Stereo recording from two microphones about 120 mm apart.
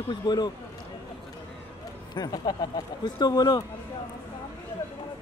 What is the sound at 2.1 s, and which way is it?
A man's voice, 35° left (ahead or behind).